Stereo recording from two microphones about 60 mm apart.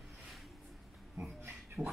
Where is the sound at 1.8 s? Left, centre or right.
Centre.